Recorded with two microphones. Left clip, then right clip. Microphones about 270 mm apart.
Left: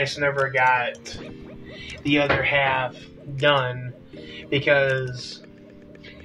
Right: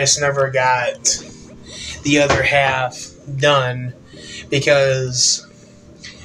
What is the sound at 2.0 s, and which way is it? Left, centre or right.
Speech, left.